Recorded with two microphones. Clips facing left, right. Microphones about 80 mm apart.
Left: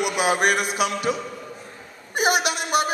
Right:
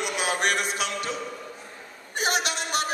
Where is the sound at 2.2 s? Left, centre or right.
Centre.